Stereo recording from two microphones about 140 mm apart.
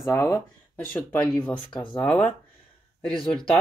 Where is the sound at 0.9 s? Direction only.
10° left (ahead or behind).